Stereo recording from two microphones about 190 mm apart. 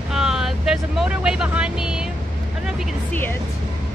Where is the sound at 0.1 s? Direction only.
Centre (ahead or behind).